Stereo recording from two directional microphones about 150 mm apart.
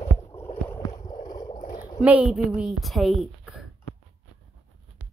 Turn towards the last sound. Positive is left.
turn(degrees=0)  # may be behind; listen again after turning